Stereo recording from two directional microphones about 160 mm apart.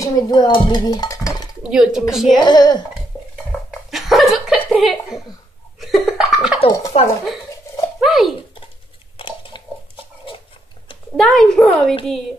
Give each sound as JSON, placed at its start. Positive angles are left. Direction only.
{"t": 0.0, "sound": "dishes", "side_deg": 25}
{"t": 1.6, "sound": "a woman's voice", "side_deg": -5}
{"t": 2.4, "sound": "speech", "side_deg": 25}
{"t": 3.9, "sound": "chuckle", "side_deg": 0}
{"t": 5.8, "sound": "cough", "side_deg": 0}
{"t": 6.9, "sound": "speech", "side_deg": 40}
{"t": 8.0, "sound": "pigeon", "side_deg": 0}
{"t": 9.1, "sound": "a sound", "side_deg": 30}
{"t": 11.1, "sound": "a woman's voice", "side_deg": 5}